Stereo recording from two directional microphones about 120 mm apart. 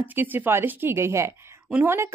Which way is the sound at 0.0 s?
15° right (ahead or behind).